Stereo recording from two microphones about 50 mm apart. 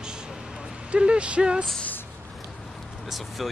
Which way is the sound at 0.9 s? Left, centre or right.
Right.